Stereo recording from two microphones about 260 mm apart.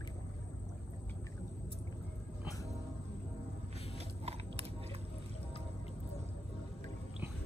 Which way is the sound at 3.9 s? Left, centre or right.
Right.